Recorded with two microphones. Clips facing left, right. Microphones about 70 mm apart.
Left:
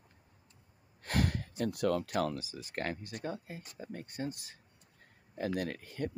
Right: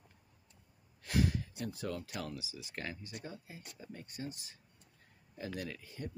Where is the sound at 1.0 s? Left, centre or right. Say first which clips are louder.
Even; left.